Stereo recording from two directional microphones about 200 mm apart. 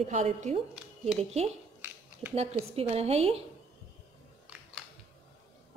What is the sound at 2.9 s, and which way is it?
Speech, 30° right (ahead or behind).